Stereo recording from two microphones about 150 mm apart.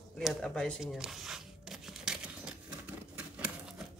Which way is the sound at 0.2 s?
Centre (ahead or behind).